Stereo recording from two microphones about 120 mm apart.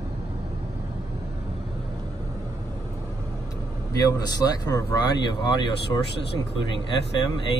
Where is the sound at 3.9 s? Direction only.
30° left (ahead or behind).